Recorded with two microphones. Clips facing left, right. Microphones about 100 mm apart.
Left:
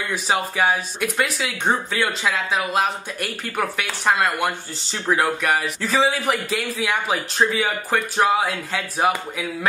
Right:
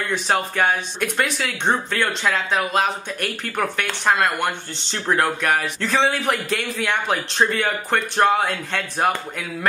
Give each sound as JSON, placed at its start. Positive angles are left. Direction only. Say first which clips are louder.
{"t": 0.1, "sound": "speech", "louder": "right 1 dB", "side_deg": 5}